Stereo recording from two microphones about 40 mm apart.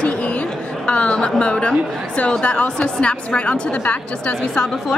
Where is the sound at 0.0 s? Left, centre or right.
Left.